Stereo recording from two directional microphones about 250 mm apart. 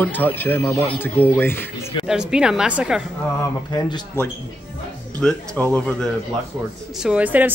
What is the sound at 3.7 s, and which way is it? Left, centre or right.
Speech, centre.